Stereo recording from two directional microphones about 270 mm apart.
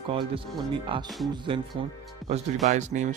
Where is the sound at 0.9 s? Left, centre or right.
Centre.